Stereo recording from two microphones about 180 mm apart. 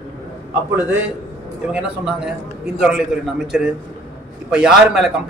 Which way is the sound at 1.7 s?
5° right (ahead or behind).